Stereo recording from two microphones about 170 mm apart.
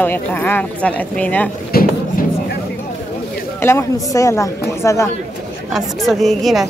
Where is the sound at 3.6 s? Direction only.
15° left (ahead or behind).